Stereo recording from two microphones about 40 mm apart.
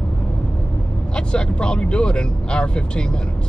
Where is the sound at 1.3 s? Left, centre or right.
Left.